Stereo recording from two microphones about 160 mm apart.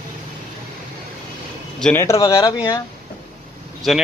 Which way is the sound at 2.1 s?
30° left (ahead or behind).